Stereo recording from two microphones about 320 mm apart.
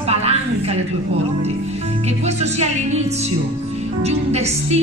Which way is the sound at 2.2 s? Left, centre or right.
Right.